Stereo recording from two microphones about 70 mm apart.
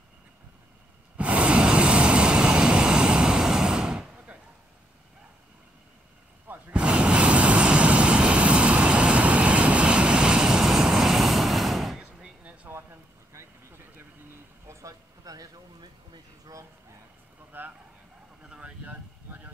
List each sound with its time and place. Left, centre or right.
1.1 s vehicle: centre
6.7 s vehicle: centre
12.0 s a sound: centre
13.3 s a sound: right
14.7 s vehicle: right
17.5 s vehicle: right
18.4 s vehicle: centre